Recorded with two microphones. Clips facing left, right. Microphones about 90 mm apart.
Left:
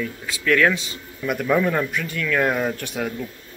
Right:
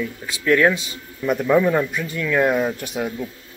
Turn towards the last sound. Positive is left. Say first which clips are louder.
# right 1 dB
turn(degrees=-15)  # may be behind; listen again after turning